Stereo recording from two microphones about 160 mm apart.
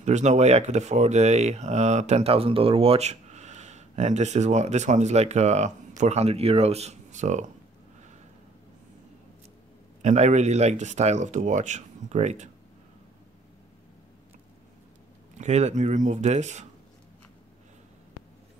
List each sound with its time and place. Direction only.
0.0 s speech: 45° right (ahead or behind)
10.0 s speech: 45° right (ahead or behind)
15.3 s speech: 45° right (ahead or behind)